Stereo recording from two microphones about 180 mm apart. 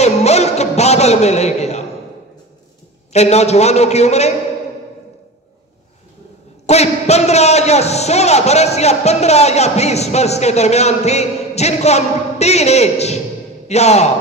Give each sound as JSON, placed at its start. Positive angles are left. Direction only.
{"t": 0.0, "sound": "a sound", "side_deg": 35}
{"t": 3.1, "sound": "a man's voice", "side_deg": 35}
{"t": 6.6, "sound": "a man's voice", "side_deg": 35}